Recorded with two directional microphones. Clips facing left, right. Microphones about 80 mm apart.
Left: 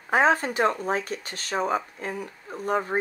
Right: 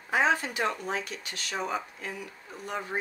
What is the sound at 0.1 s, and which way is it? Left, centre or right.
Speech, left.